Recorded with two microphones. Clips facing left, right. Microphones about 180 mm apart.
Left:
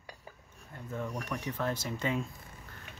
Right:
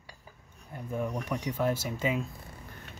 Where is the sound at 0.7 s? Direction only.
15° right (ahead or behind).